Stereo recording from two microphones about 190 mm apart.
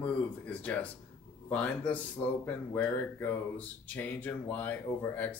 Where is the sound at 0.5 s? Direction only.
5° left (ahead or behind).